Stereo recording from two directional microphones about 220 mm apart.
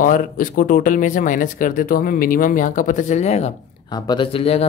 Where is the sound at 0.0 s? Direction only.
40° left (ahead or behind).